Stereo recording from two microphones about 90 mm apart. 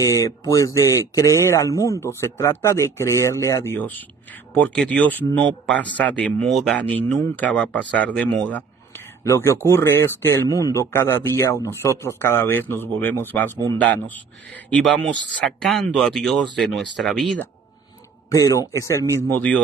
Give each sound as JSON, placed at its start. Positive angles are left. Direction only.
{"t": 0.0, "sound": "speech", "side_deg": 35}
{"t": 3.7, "sound": "a man's voice", "side_deg": 20}
{"t": 9.2, "sound": "a man's voice", "side_deg": 30}
{"t": 15.4, "sound": "speech", "side_deg": 0}
{"t": 18.3, "sound": "speech", "side_deg": 40}